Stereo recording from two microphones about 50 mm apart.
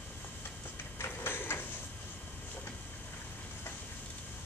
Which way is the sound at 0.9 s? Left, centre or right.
Left.